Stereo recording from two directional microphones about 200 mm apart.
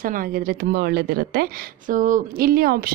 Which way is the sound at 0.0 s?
45° right (ahead or behind).